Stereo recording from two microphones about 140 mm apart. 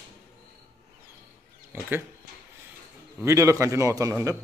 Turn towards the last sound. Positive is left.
turn(degrees=-20)  # may be behind; listen again after turning